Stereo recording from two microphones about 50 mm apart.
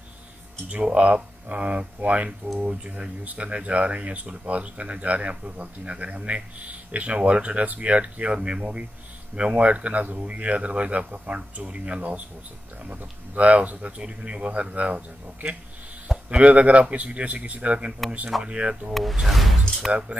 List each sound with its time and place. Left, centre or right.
0.7 s speech: right
19.1 s speech: centre
19.9 s speech: right